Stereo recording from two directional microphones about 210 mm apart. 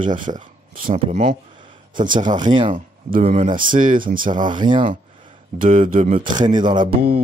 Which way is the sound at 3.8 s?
40° right (ahead or behind).